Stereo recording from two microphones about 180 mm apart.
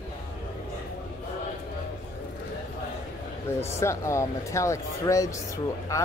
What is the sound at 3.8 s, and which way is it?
Speech, 15° left (ahead or behind).